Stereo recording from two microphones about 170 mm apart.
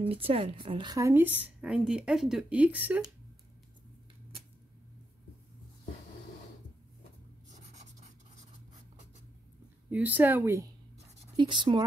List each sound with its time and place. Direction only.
0.1 s a woman's voice: 35° right (ahead or behind); by 3.0 s 10° right (ahead or behind)
7.7 s rub: 45° right (ahead or behind)
9.8 s a woman's voice: 10° right (ahead or behind)
11.3 s speech: 30° right (ahead or behind)